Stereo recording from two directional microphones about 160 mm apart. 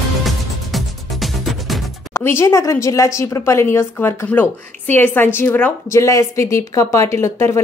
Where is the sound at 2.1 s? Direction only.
15° left (ahead or behind).